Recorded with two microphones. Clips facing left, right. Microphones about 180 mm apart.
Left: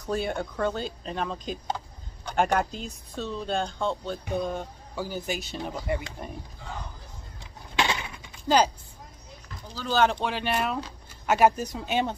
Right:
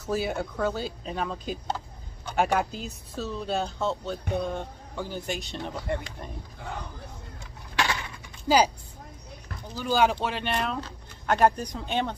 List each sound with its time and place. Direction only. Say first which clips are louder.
0.0 s speech: even; 5° right (ahead or behind)
7.7 s a sound: left 1 dB; 20° left (ahead or behind)
8.5 s speech: even; 10° right (ahead or behind)
9.8 s speech: even; 10° right (ahead or behind); by 12.2 s 10° left (ahead or behind)